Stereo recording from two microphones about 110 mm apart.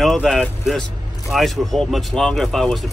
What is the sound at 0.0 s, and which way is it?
A man's voice, 5° left (ahead or behind).